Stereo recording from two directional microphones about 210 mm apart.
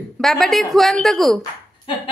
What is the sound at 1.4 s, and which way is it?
Speech, 25° left (ahead or behind).